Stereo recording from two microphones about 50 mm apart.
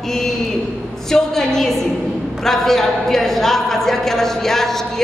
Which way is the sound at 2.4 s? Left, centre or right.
Centre.